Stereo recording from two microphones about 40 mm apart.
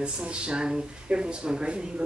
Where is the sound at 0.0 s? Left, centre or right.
Right.